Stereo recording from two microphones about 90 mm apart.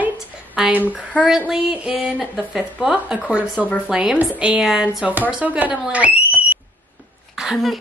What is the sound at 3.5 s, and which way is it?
Speech, 15° left (ahead or behind).